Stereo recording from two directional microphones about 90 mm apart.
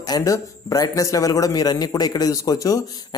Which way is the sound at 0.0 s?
40° left (ahead or behind).